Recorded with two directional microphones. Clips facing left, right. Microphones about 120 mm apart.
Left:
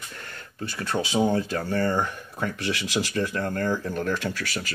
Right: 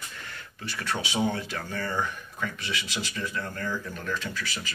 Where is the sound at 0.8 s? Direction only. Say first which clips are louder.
Left 5 dB; 35° left (ahead or behind).